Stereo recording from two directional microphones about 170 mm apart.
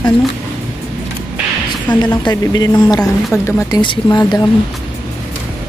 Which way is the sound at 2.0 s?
25° left (ahead or behind).